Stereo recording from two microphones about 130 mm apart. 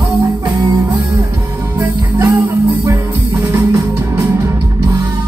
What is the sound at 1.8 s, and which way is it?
Music, 20° right (ahead or behind).